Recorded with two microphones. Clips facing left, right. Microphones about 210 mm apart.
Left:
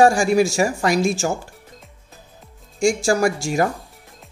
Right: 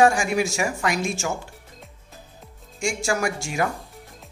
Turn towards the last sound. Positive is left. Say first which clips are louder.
# left 6 dB
turn(degrees=35)  # may be behind; listen again after turning